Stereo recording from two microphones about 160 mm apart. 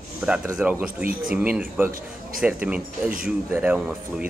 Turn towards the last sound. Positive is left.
turn(degrees=-5)  # may be behind; listen again after turning